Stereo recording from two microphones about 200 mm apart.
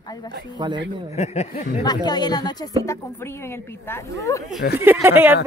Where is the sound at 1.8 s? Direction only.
20° left (ahead or behind).